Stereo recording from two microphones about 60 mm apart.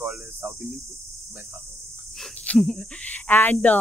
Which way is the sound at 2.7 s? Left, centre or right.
Left.